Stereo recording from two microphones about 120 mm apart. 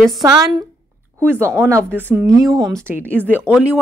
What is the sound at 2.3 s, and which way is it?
Speech, 30° right (ahead or behind).